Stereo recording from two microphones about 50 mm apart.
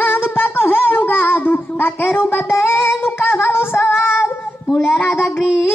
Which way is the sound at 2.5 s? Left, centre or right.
Left.